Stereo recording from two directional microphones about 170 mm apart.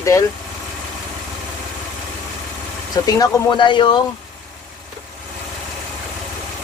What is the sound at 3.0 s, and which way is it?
Speech, 20° left (ahead or behind).